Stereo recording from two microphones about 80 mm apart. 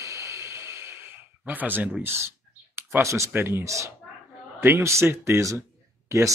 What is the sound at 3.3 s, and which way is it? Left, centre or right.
Speech, right.